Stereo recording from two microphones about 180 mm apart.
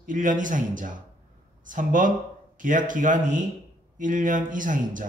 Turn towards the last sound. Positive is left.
turn(degrees=-45)  # may be behind; listen again after turning